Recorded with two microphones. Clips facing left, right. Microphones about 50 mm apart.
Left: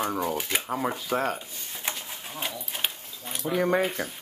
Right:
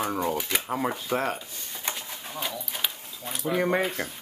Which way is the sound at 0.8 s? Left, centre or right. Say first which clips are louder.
Even; centre.